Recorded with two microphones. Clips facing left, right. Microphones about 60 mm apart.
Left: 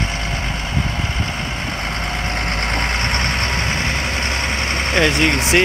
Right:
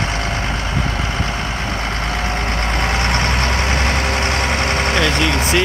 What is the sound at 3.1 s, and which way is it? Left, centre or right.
Vehicle, right.